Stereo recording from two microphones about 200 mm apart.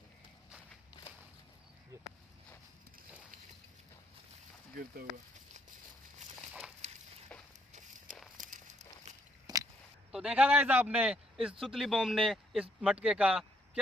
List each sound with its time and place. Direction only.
8.4 s walk: 40° right (ahead or behind)
9.5 s a sound: 20° right (ahead or behind)
10.1 s a man's voice: 5° right (ahead or behind)